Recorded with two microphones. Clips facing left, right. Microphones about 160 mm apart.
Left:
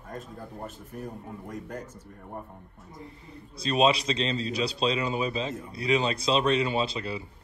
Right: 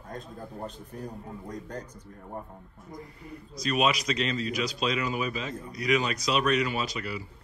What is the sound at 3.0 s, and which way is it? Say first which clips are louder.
A man's voice: right 1 dB; 25° left (ahead or behind).